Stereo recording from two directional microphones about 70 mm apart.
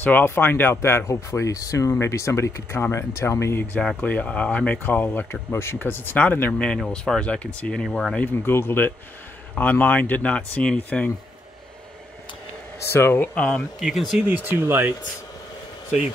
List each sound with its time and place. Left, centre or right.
0.0 s speech: left
4.0 s speech: left
5.5 s speech: left
6.9 s speech: centre
8.3 s speech: left
12.8 s speech: left
13.3 s speech: centre
13.7 s speech: centre
14.2 s speech: right